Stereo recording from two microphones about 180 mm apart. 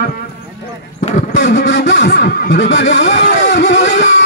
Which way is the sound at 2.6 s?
90° left.